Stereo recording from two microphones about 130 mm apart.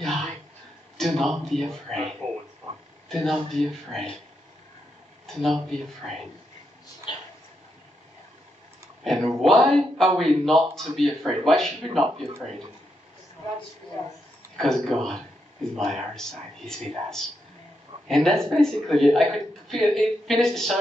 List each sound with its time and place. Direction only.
0.0 s a sound: centre (ahead or behind)
0.9 s a man's voice: centre (ahead or behind)
3.1 s a man's voice: centre (ahead or behind)
5.2 s a man's voice: centre (ahead or behind)
7.1 s a sound: 35° left (ahead or behind)
9.0 s a man's voice: centre (ahead or behind)
14.6 s a man's voice: centre (ahead or behind)